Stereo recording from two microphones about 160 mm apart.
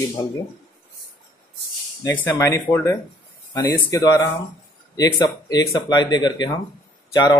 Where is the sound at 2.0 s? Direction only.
15° left (ahead or behind).